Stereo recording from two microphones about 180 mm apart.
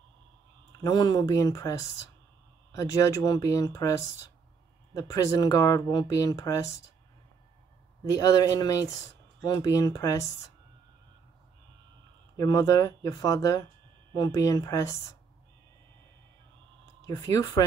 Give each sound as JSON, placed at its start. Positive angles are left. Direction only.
{"t": 0.8, "sound": "speech", "side_deg": 20}
{"t": 4.9, "sound": "speech", "side_deg": 20}
{"t": 8.1, "sound": "speech", "side_deg": 20}
{"t": 12.4, "sound": "speech", "side_deg": 20}
{"t": 17.0, "sound": "speech", "side_deg": 20}